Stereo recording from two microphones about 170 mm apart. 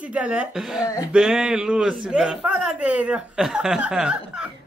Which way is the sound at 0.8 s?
20° left (ahead or behind).